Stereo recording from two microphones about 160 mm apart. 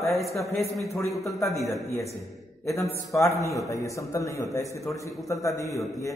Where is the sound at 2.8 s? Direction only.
20° left (ahead or behind).